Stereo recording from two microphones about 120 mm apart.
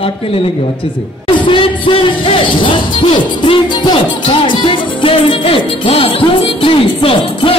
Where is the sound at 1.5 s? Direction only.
45° left (ahead or behind).